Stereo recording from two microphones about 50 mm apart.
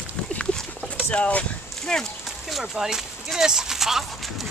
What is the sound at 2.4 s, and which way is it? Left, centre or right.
Speech, centre.